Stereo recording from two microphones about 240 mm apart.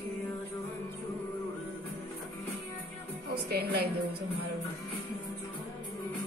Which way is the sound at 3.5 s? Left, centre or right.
Right.